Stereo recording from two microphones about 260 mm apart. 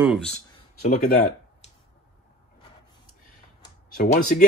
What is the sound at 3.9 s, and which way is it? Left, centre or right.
Speech, left.